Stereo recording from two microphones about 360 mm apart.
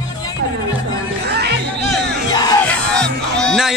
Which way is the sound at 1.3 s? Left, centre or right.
Right.